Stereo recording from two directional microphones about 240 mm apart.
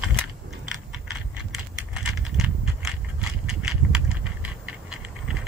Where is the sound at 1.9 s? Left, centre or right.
Centre.